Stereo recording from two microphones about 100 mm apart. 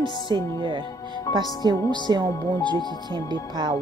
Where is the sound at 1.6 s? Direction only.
45° right (ahead or behind).